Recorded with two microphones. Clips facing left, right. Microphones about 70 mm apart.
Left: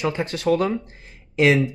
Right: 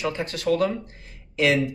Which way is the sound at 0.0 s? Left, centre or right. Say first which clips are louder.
Left 3 dB; left.